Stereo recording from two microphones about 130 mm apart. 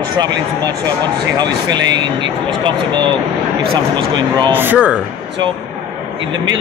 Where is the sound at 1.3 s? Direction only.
30° right (ahead or behind).